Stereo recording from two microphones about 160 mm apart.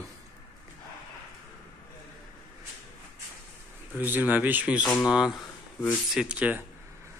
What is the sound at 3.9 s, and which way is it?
Speech, 10° right (ahead or behind).